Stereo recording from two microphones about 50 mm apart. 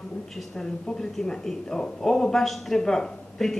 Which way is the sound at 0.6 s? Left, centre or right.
Centre.